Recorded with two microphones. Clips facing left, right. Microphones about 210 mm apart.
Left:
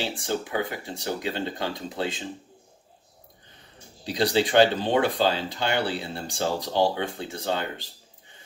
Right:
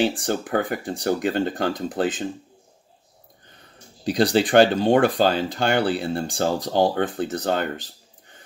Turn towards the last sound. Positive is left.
turn(degrees=-50)  # may be behind; listen again after turning